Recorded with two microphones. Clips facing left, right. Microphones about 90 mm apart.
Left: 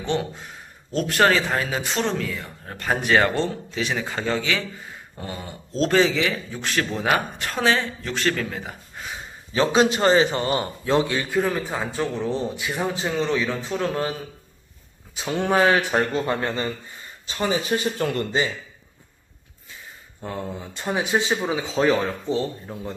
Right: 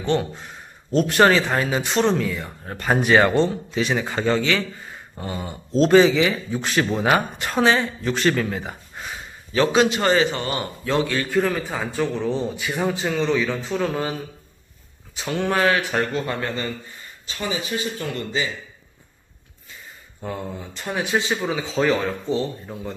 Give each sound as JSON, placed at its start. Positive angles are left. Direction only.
{"t": 0.9, "sound": "speech", "side_deg": -5}
{"t": 9.5, "sound": "a man's voice", "side_deg": 25}
{"t": 11.3, "sound": "speech", "side_deg": 5}
{"t": 15.1, "sound": "a man's voice", "side_deg": 10}
{"t": 17.3, "sound": "speech", "side_deg": 40}
{"t": 20.2, "sound": "speech", "side_deg": 0}
{"t": 20.7, "sound": "speech", "side_deg": 15}